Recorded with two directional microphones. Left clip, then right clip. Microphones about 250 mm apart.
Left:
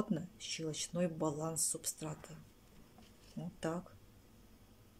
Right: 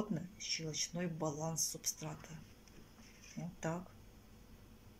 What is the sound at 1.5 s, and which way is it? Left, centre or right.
Speech, left.